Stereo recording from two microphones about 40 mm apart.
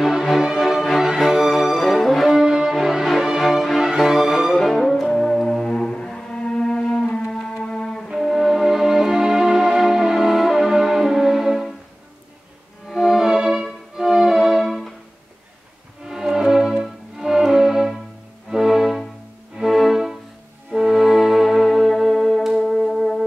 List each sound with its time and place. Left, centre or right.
0.0 s music: centre
2.2 s music: centre
4.6 s music: centre
8.3 s music: centre
12.9 s music: centre
14.6 s music: centre
16.1 s music: centre